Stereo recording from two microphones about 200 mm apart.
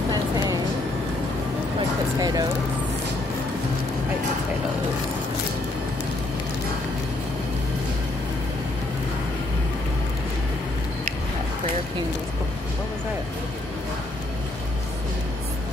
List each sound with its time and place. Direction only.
2.1 s speech: 20° right (ahead or behind)